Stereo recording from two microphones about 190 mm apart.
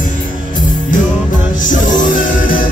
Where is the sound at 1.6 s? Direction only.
40° left (ahead or behind).